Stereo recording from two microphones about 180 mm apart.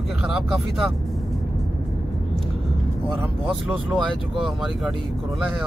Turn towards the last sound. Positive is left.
turn(degrees=0)  # may be behind; listen again after turning